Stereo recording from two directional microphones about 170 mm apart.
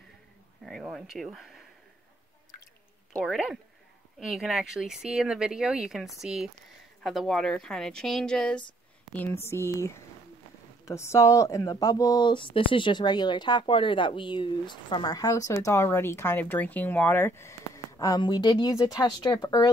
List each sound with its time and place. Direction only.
0.7 s speech: centre (ahead or behind)
3.1 s speech: 5° left (ahead or behind); by 19.7 s 25° left (ahead or behind)